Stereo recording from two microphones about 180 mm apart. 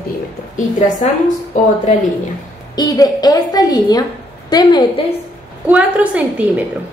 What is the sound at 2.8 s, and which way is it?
A woman's voice, 20° left (ahead or behind).